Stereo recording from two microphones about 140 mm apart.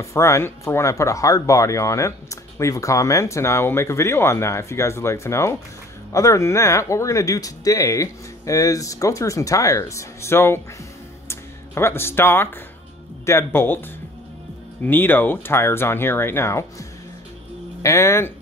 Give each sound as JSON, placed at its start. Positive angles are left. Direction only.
{"t": 0.0, "sound": "speech", "side_deg": 20}
{"t": 17.8, "sound": "speech", "side_deg": 20}